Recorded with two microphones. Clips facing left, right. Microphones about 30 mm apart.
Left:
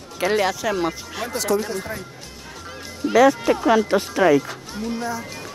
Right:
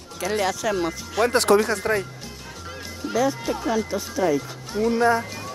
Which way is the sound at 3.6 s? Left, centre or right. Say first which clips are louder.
Left 7 dB; left.